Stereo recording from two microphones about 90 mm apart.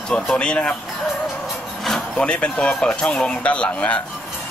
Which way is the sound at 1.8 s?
5° left (ahead or behind).